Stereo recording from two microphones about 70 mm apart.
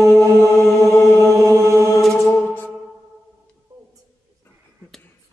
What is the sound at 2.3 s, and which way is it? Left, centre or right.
Music, left.